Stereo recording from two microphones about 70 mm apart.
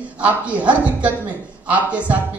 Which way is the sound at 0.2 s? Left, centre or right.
Centre.